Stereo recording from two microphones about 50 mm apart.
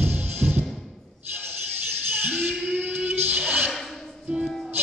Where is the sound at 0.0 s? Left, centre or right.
Right.